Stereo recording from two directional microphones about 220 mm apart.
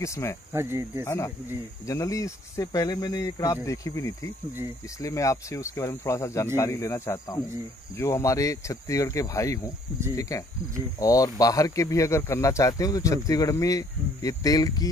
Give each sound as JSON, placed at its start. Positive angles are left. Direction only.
{"t": 0.0, "sound": "speech", "side_deg": 15}
{"t": 0.5, "sound": "speech", "side_deg": -10}
{"t": 1.0, "sound": "speech", "side_deg": 10}